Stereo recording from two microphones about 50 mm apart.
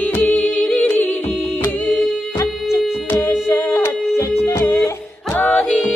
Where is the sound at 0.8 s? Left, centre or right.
Left.